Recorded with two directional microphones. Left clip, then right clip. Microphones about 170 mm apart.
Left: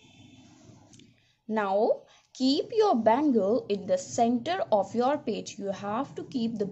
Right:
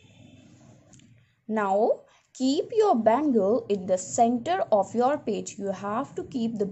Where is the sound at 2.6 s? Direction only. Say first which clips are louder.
Right 3 dB; 5° right (ahead or behind).